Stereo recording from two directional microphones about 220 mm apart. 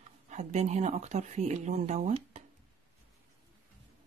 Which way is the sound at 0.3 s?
30° right (ahead or behind).